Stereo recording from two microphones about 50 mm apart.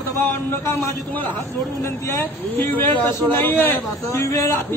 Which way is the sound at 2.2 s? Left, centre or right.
Left.